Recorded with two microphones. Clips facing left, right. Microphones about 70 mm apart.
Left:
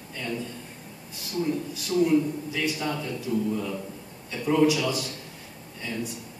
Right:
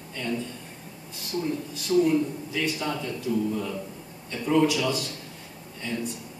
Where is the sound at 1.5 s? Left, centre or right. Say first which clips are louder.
Right 1 dB; centre.